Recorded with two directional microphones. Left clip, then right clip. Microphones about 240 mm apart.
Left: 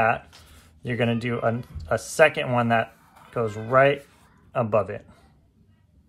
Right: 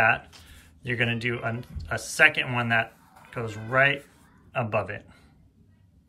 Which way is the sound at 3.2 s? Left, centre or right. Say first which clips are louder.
Left 7 dB; centre.